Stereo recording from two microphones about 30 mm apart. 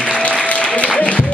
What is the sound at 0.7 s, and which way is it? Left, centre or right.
Music, left.